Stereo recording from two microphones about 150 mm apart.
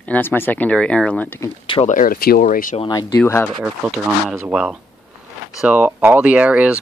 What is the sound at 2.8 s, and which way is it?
Speech, 25° left (ahead or behind).